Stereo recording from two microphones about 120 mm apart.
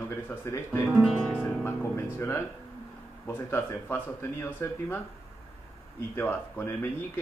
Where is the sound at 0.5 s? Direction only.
25° left (ahead or behind).